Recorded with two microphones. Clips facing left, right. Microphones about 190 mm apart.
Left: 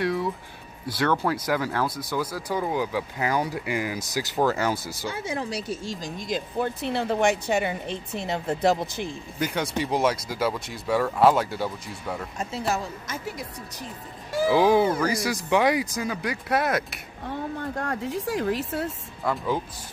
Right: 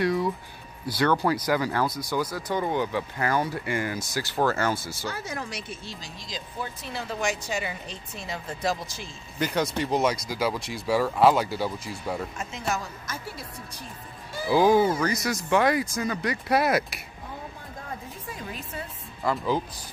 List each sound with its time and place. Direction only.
0.0 s speech: centre (ahead or behind)
5.1 s speech: 30° left (ahead or behind); by 9.1 s 60° left (ahead or behind)
9.4 s speech: 5° left (ahead or behind)
10.3 s speech: 5° right (ahead or behind)
12.4 s a woman's voice: 35° left (ahead or behind)
14.5 s speech: centre (ahead or behind)
15.2 s speech: 15° left (ahead or behind); by 17.0 s 5° right (ahead or behind)
17.3 s speech: 75° left (ahead or behind)
19.2 s speech: centre (ahead or behind)